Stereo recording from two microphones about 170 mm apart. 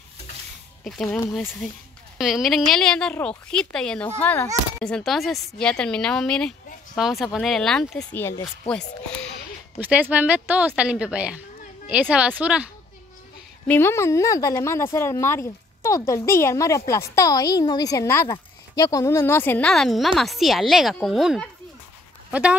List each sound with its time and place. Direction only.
0.8 s a woman's voice: centre (ahead or behind)
9.8 s speech: 10° right (ahead or behind)
13.7 s a woman's voice: 15° left (ahead or behind); by 22.6 s 5° right (ahead or behind)